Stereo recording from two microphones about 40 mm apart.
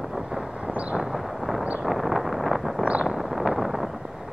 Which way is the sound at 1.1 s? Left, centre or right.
Centre.